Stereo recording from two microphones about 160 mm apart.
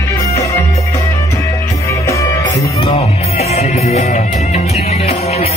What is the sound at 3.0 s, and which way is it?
Music, 40° left (ahead or behind).